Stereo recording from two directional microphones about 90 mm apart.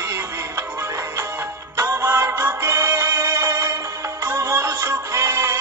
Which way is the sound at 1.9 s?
25° right (ahead or behind).